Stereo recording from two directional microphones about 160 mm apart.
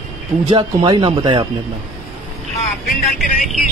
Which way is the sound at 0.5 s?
30° right (ahead or behind).